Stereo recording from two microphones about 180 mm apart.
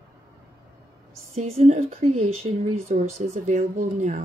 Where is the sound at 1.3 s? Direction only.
35° right (ahead or behind).